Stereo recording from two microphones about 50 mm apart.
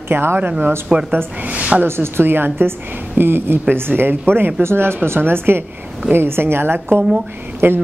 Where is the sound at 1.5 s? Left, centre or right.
Right.